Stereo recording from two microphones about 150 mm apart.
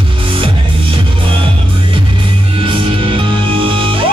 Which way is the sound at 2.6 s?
35° right (ahead or behind).